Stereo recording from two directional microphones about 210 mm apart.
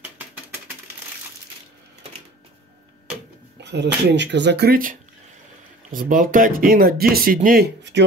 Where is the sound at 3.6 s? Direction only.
55° right (ahead or behind).